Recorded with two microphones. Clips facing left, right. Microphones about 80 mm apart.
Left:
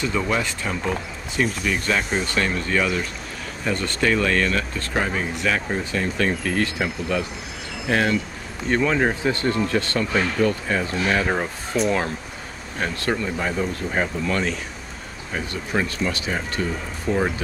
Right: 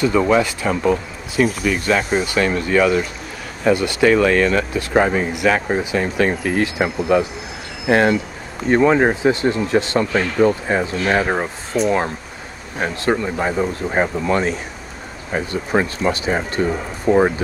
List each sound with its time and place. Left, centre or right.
0.3 s speech: centre
4.9 s speech: right
5.3 s speech: centre; by 17.3 s right